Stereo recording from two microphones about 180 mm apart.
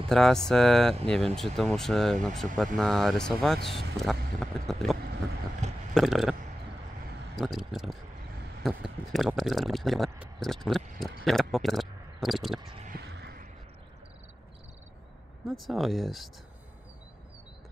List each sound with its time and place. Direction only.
0.1 s speech: 5° left (ahead or behind)
3.9 s vehicle: centre (ahead or behind)
5.9 s speech: centre (ahead or behind)
7.3 s speech: centre (ahead or behind)
13.0 s a sound: 70° right (ahead or behind)
15.4 s speech: centre (ahead or behind)